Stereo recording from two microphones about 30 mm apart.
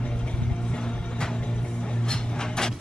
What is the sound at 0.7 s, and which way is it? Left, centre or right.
Music, left.